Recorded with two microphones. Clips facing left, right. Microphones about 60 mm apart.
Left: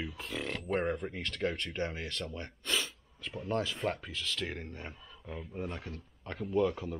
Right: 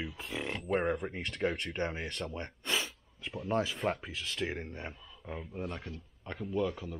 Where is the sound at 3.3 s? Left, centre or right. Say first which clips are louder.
Right 2 dB; centre.